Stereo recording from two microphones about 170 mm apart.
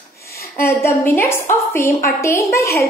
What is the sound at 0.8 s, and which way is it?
A woman's voice, 15° left (ahead or behind).